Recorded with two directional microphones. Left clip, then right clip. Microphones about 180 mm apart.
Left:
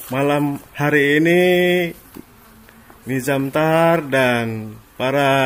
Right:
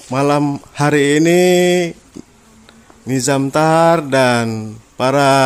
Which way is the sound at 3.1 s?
25° right (ahead or behind).